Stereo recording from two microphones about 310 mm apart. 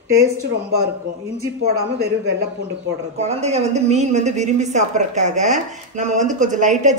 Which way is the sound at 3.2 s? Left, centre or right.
Right.